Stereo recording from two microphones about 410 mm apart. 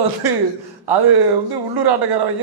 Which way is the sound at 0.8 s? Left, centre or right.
Right.